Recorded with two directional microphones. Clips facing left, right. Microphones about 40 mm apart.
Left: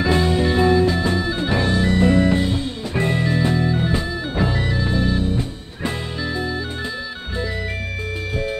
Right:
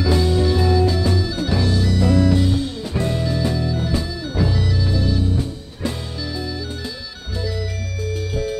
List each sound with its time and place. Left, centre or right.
0.0 s music: left
3.0 s organ: left